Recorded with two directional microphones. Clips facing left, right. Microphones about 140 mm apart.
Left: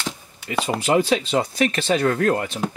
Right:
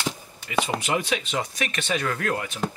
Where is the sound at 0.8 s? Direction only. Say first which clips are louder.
Left 7 dB; 30° left (ahead or behind).